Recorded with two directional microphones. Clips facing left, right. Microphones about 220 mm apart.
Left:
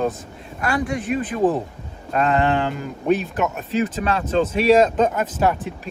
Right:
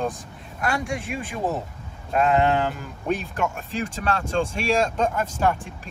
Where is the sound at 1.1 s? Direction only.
5° right (ahead or behind).